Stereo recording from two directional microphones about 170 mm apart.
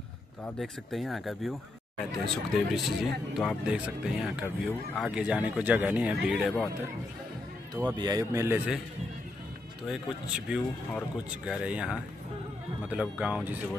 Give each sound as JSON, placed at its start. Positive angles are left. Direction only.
{"t": 0.6, "sound": "speech", "side_deg": 0}
{"t": 7.7, "sound": "a man's voice", "side_deg": -25}
{"t": 9.8, "sound": "speech", "side_deg": -5}